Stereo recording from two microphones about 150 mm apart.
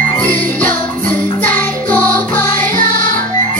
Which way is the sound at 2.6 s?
65° right (ahead or behind).